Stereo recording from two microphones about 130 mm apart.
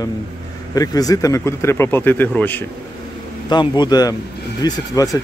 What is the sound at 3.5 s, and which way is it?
Speech, 35° left (ahead or behind).